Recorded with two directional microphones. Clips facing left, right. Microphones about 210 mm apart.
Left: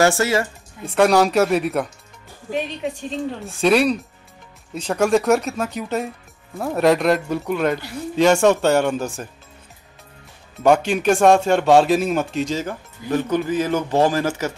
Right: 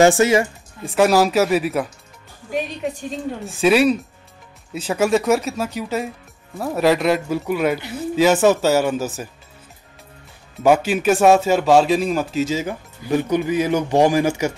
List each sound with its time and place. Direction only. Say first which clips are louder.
0.0 s speech: right 4 dB; 20° right (ahead or behind)
0.8 s speech: even; 5° right (ahead or behind)
10.6 s speech: even; 5° right (ahead or behind)